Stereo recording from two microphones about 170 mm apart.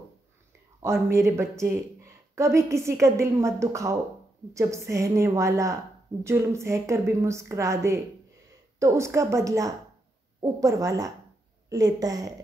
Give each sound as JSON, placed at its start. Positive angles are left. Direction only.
{"t": 1.1, "sound": "a woman's voice", "side_deg": -15}